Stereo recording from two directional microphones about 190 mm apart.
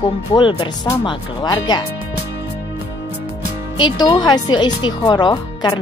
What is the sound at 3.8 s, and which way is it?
A woman's voice, 20° left (ahead or behind).